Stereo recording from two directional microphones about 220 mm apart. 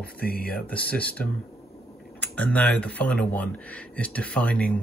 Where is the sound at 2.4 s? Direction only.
5° left (ahead or behind).